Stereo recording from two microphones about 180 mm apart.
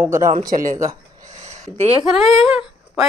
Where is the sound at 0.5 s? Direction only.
45° right (ahead or behind).